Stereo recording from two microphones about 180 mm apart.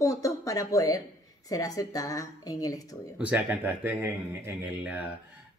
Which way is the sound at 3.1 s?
5° right (ahead or behind).